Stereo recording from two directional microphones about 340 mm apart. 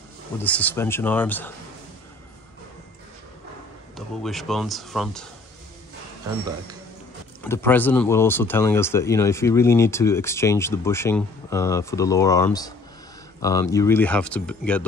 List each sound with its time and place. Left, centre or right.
0.4 s speech: centre
3.9 s speech: centre
7.4 s speech: centre